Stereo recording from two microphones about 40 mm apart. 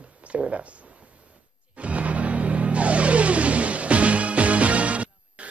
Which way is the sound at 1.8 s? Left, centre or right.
Right.